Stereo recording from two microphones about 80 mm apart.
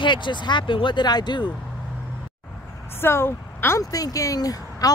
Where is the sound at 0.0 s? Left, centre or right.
Left.